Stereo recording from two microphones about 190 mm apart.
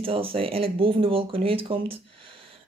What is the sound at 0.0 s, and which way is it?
Speech, 30° right (ahead or behind).